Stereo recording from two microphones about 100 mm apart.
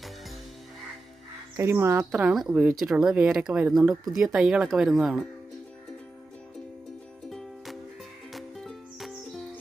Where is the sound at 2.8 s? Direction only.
5° right (ahead or behind).